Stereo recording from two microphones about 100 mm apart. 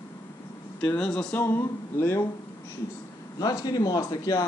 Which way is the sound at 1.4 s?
25° left (ahead or behind).